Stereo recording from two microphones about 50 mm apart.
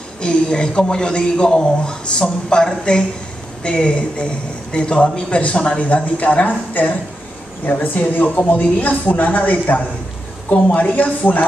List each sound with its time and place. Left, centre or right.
0.2 s a man's voice: centre